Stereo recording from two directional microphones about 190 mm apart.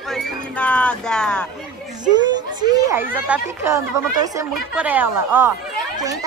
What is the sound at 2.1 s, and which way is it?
Speech, 20° right (ahead or behind).